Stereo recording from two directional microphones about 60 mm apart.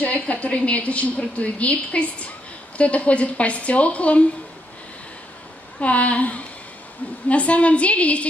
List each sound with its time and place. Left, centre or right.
0.0 s a woman's voice: left
5.8 s a woman's voice: left